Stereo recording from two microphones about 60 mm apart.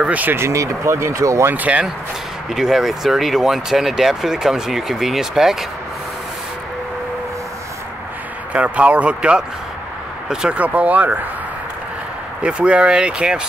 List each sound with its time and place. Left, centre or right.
0.0 s speech: right
0.4 s speech: right
1.5 s speech: right
2.5 s speech: centre
8.5 s speech: right
10.6 s speech: right
12.4 s speech: centre